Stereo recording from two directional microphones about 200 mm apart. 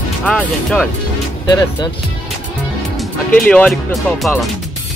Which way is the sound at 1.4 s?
20° left (ahead or behind).